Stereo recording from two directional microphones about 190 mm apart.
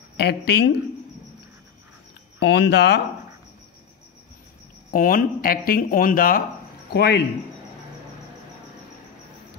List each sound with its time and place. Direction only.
0.2 s speech: 60° left (ahead or behind)
2.4 s speech: 60° left (ahead or behind)
4.9 s speech: 50° left (ahead or behind)
6.9 s speech: 60° left (ahead or behind)